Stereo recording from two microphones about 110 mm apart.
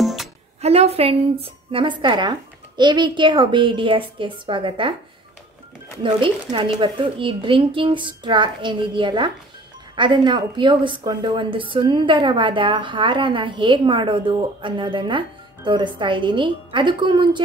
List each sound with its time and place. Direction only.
0.0 s music: centre (ahead or behind)
0.6 s a woman's voice: 70° right (ahead or behind); by 4.9 s 50° right (ahead or behind)
6.2 s a woman's voice: 50° right (ahead or behind)